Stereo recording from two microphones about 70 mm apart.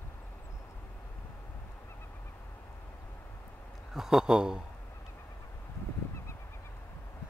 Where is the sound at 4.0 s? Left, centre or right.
Centre.